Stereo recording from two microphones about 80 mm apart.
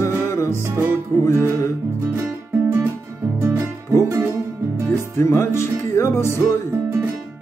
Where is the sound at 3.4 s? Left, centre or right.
Right.